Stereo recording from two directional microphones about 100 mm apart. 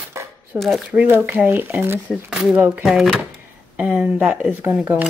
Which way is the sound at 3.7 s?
15° right (ahead or behind).